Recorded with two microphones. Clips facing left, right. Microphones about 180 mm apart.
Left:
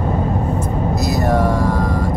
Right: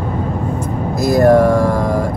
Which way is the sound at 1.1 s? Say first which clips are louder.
Right 11 dB; 55° right (ahead or behind).